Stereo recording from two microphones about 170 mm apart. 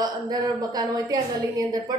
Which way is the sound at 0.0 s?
25° right (ahead or behind).